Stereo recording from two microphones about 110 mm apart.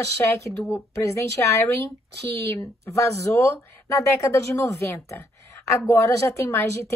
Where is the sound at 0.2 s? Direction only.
25° left (ahead or behind).